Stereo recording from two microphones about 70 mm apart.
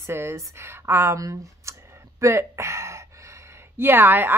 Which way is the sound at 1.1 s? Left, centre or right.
Right.